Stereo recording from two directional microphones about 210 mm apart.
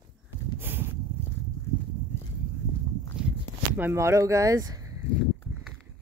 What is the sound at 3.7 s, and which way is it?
Speech, 10° right (ahead or behind).